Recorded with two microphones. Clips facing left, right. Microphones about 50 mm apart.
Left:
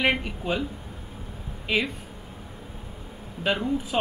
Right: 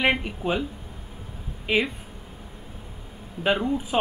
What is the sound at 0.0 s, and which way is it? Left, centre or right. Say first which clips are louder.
Speech: right 1 dB; centre.